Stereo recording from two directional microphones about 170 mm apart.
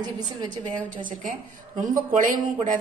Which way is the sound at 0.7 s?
50° right (ahead or behind).